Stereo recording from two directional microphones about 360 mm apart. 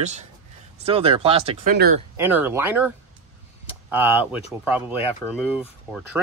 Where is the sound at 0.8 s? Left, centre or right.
Centre.